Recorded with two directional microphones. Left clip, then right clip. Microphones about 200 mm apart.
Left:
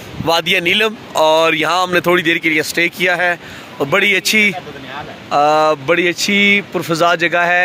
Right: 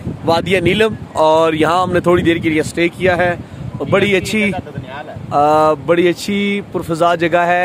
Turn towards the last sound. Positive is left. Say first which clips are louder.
# even
turn(degrees=-15)  # may be behind; listen again after turning